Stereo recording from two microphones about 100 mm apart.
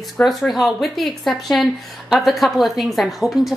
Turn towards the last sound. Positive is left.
turn(degrees=-5)  # may be behind; listen again after turning